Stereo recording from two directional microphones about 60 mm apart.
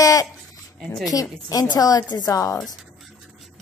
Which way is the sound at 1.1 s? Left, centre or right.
Left.